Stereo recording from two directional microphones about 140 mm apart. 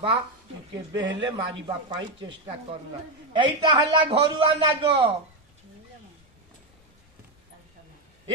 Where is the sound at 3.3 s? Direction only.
35° right (ahead or behind).